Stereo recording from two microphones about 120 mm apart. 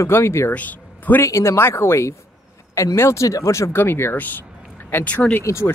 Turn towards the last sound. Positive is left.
turn(degrees=25)  # may be behind; listen again after turning